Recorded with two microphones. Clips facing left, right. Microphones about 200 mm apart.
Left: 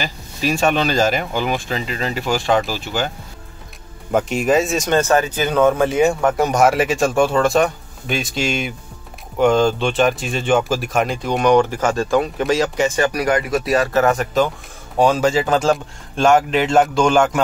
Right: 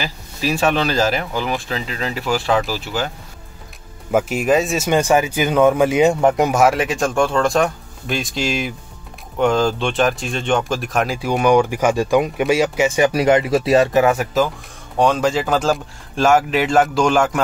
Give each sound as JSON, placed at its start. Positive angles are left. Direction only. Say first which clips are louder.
{"t": 0.0, "sound": "speech", "louder": "left 1 dB", "side_deg": -5}
{"t": 4.1, "sound": "speech", "louder": "even", "side_deg": -5}
{"t": 6.5, "sound": "speech", "louder": "left 1 dB", "side_deg": 0}
{"t": 13.1, "sound": "speech", "louder": "right 4 dB", "side_deg": -25}
{"t": 13.9, "sound": "speech", "louder": "right 1 dB", "side_deg": -10}